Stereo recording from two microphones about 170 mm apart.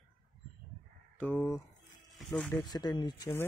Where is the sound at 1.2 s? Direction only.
10° left (ahead or behind).